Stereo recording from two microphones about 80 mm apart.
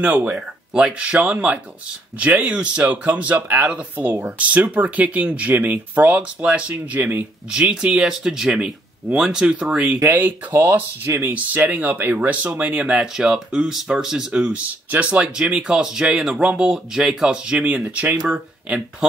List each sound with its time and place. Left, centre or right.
0.0 s speech: centre
7.5 s speech: centre